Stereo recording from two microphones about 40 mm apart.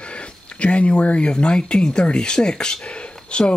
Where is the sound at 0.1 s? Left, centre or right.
Left.